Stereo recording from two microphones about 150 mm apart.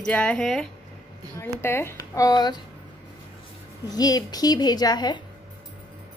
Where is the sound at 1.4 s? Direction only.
15° left (ahead or behind).